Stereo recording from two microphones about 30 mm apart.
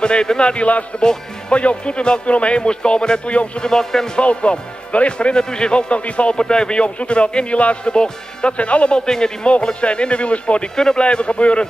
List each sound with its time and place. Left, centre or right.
0.0 s speech: left
2.3 s music: left
2.6 s speech: left
3.3 s music: left
3.6 s speech: centre
4.2 s speech: left
5.3 s speech: left
6.4 s speech: left
8.5 s speech: left
9.0 s speech: left
9.8 s speech: left